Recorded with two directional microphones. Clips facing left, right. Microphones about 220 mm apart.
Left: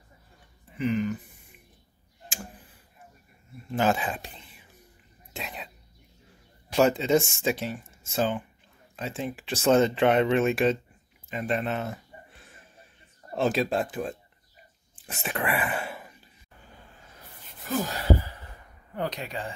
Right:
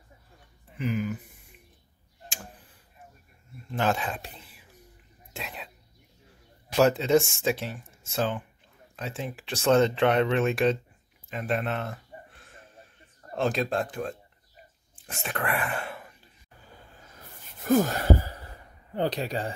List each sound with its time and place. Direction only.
0.7 s speech: 5° right (ahead or behind)
3.7 s speech: 5° left (ahead or behind)
5.3 s a sound: centre (ahead or behind)
6.8 s speech: centre (ahead or behind)
13.3 s speech: 5° left (ahead or behind)
17.6 s wail: 50° right (ahead or behind)
18.9 s speech: 30° right (ahead or behind)